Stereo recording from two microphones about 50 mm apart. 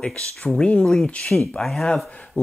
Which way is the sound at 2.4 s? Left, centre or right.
Left.